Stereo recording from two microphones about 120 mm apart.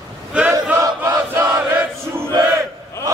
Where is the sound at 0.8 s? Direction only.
25° right (ahead or behind).